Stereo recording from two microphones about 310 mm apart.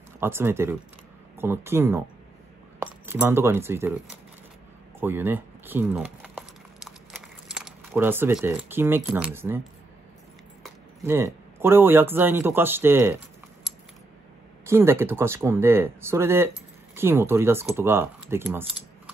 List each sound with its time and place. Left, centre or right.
0.2 s speech: centre
5.0 s crumpling: centre
11.0 s speech: centre
14.7 s speech: centre